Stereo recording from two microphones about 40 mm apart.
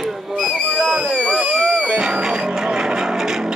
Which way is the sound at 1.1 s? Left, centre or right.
Left.